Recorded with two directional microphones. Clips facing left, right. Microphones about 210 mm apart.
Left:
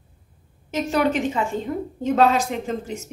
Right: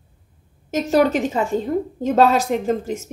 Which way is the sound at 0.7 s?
40° right (ahead or behind).